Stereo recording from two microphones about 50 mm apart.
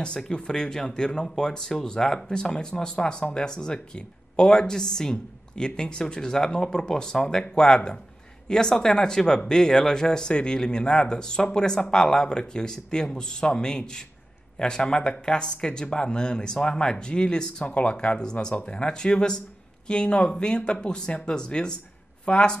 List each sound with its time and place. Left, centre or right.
0.3 s speech: centre